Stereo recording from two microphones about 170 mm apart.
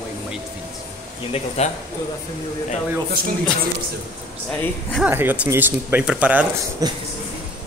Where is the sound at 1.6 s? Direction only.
40° left (ahead or behind).